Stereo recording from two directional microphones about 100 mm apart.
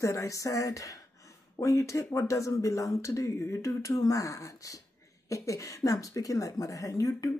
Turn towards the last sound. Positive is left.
turn(degrees=35)  # may be behind; listen again after turning